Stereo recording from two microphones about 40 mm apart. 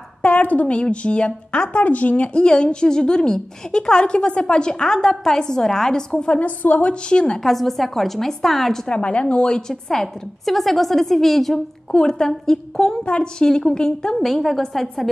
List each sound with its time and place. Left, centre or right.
0.2 s a sound: left
0.7 s speech: left
2.3 s a woman's voice: left
6.3 s a woman's voice: left
6.8 s a woman's voice: left
7.4 s a woman's voice: centre
8.8 s a woman's voice: left
13.5 s a woman's voice: centre
14.2 s a woman's voice: centre